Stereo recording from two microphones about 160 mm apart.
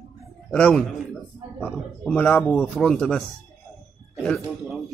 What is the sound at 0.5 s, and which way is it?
A man's voice, 5° left (ahead or behind).